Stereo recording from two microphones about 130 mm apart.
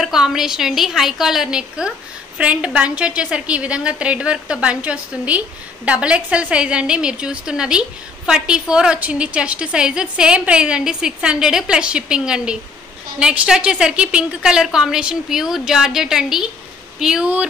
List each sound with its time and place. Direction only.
0.0 s a woman's voice: 5° right (ahead or behind)